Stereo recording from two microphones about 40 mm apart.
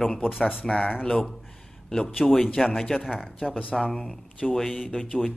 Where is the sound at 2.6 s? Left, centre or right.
Centre.